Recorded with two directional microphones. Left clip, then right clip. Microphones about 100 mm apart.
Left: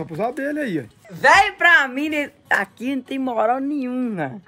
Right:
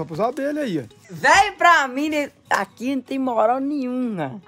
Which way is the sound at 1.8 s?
90° right.